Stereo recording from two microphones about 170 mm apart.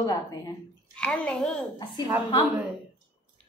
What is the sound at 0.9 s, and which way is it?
Speech, 5° left (ahead or behind).